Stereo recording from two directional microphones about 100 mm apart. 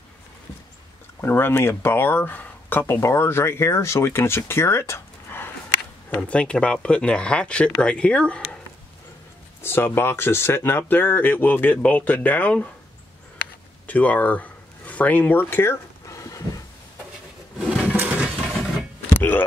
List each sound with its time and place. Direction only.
1.2 s speech: 25° left (ahead or behind)
6.0 s speech: 10° left (ahead or behind)
9.6 s speech: 25° left (ahead or behind)
13.8 s a sound: 15° left (ahead or behind); by 16.6 s 35° left (ahead or behind)
17.6 s sewing machine: 10° right (ahead or behind)
19.1 s hiccup: 20° left (ahead or behind)